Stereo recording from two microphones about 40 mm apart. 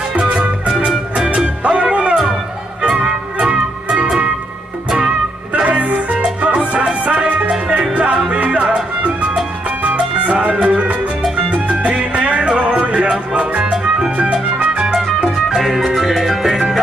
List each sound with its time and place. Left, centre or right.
0.2 s music: centre
1.6 s music: right
5.5 s music: right
10.3 s music: right
13.7 s music: centre
14.6 s music: right
15.4 s music: centre